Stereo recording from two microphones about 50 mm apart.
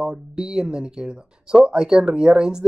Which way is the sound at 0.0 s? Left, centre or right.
Centre.